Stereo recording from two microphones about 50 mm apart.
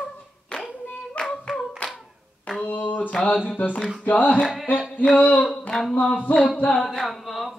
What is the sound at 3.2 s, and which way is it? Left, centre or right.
Female singing, left.